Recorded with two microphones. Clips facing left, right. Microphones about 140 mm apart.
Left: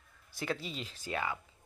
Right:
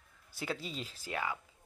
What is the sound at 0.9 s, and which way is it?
Speech, 10° right (ahead or behind).